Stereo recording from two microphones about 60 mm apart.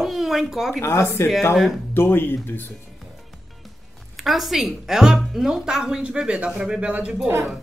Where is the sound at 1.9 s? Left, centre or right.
Left.